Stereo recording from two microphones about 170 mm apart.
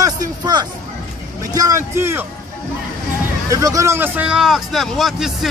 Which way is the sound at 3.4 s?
20° right (ahead or behind).